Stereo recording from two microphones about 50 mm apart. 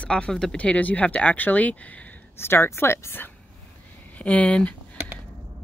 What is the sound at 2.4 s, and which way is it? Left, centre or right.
Speech, left.